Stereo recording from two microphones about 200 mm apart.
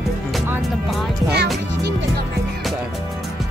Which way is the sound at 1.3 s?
55° right (ahead or behind).